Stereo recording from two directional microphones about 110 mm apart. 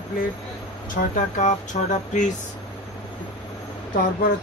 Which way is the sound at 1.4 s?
90° left.